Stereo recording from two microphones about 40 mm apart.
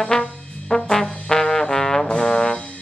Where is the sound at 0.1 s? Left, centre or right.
Centre.